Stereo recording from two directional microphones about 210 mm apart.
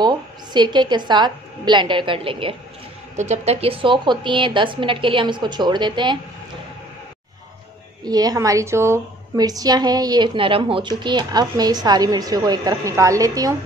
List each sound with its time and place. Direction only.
0.0 s a woman's voice: 20° right (ahead or behind)
8.0 s a woman's voice: 20° right (ahead or behind)